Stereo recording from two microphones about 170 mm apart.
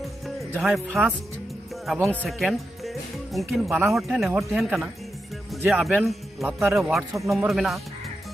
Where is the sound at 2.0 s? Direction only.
Centre (ahead or behind).